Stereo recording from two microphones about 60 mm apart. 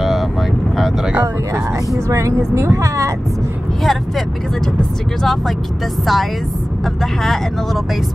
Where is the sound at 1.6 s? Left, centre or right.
Right.